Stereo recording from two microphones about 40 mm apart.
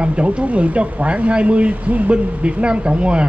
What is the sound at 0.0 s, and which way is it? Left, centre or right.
Speech, right.